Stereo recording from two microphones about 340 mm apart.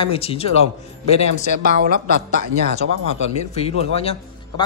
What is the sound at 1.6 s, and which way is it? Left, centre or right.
Speech, right.